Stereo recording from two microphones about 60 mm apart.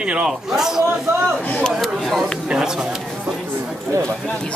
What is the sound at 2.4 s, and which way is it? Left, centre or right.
Speech, centre.